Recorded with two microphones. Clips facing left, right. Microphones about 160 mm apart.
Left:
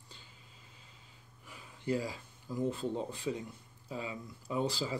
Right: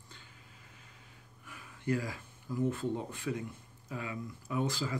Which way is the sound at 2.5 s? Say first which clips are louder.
Right 2 dB; 15° left (ahead or behind).